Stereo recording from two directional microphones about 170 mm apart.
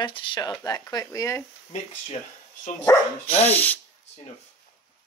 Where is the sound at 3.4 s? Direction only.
10° left (ahead or behind).